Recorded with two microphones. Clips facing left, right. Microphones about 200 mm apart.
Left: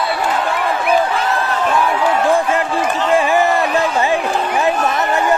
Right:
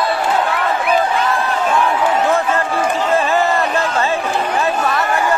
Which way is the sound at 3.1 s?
15° left (ahead or behind).